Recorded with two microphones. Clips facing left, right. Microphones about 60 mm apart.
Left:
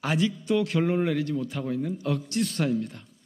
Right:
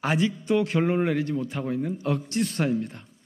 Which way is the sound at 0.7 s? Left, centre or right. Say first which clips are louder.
Right 1 dB; right.